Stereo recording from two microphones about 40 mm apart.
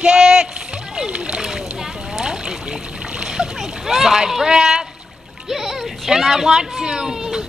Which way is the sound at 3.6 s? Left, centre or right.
Centre.